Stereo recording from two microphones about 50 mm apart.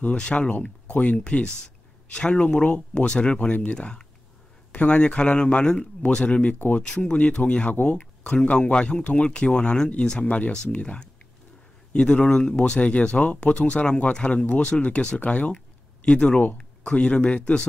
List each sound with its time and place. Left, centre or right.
0.0 s speech: left
12.3 s speech: centre